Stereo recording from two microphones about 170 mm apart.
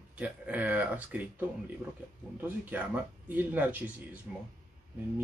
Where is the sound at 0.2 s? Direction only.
10° right (ahead or behind).